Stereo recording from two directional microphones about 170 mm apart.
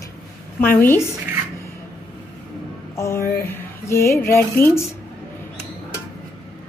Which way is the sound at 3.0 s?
15° left (ahead or behind).